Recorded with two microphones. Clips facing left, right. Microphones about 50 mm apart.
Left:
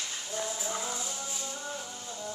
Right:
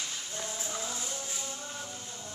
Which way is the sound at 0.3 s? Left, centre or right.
Left.